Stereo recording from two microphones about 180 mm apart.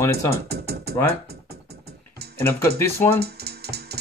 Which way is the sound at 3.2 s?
60° right (ahead or behind).